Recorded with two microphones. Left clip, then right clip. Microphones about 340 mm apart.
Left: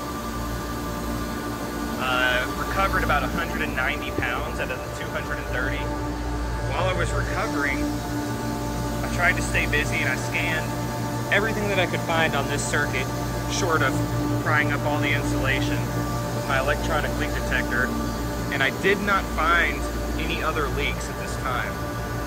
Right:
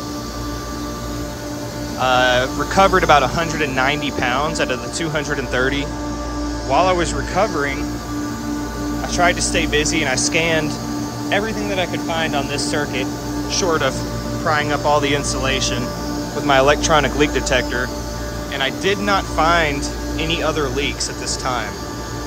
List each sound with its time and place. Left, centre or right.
2.0 s speech: centre
9.2 s speech: centre
11.3 s speech: centre
18.6 s speech: centre